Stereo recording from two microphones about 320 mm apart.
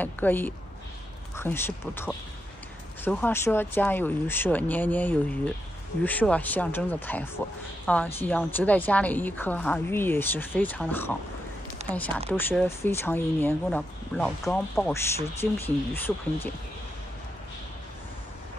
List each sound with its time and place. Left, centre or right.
0.0 s a woman's voice: centre
11.8 s a sound: right
12.3 s speech: centre